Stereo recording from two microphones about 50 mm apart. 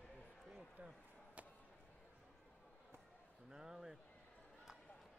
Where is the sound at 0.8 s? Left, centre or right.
Right.